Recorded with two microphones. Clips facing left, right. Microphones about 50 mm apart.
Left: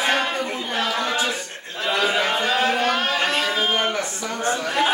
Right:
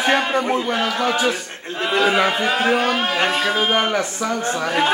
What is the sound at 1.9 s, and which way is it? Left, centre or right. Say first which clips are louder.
Speech: right 4 dB; right.